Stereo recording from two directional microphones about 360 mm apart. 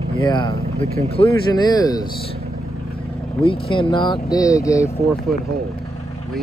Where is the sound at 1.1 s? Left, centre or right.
Centre.